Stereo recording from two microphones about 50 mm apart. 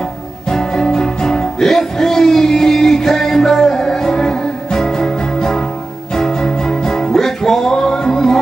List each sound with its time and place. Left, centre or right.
0.5 s music: centre